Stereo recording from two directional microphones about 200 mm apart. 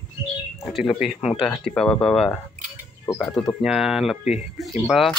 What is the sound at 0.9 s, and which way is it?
Speech, centre (ahead or behind).